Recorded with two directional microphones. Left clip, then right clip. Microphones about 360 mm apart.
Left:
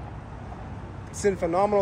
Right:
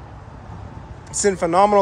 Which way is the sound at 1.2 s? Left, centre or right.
Centre.